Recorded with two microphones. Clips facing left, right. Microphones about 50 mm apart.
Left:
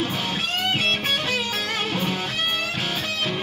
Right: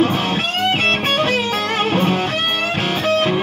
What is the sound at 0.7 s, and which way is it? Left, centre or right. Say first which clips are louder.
Music: right 6 dB; right.